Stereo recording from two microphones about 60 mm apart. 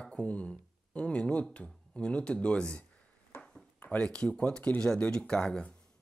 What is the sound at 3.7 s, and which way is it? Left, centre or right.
Speech, centre.